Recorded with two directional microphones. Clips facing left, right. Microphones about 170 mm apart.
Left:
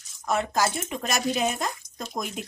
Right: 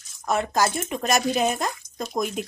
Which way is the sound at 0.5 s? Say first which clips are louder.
Right 3 dB; 45° right (ahead or behind).